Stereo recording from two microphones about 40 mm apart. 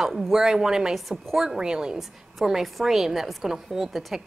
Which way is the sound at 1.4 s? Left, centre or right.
Centre.